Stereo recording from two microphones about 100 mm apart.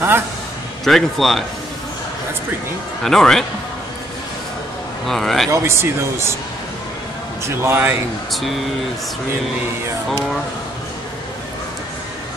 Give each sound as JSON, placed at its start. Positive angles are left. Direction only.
{"t": 0.8, "sound": "a man's voice", "side_deg": 5}
{"t": 3.0, "sound": "a man's voice", "side_deg": 5}
{"t": 5.0, "sound": "a man's voice", "side_deg": 0}
{"t": 5.5, "sound": "speech", "side_deg": -25}
{"t": 7.4, "sound": "speech", "side_deg": -25}
{"t": 8.3, "sound": "a man's voice", "side_deg": 0}